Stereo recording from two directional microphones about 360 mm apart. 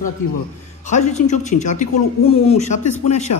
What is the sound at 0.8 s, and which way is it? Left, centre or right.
A woman's voice, centre.